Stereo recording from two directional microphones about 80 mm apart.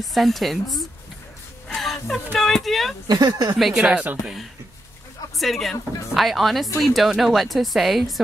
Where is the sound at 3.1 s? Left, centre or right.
Right.